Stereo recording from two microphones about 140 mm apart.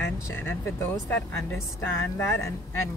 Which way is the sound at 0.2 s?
15° left (ahead or behind).